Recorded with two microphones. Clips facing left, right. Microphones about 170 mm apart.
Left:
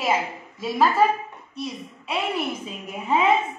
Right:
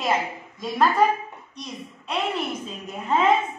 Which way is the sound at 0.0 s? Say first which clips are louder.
Left 1 dB; 5° left (ahead or behind).